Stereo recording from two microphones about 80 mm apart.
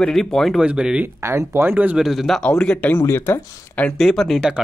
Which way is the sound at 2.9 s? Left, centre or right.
Left.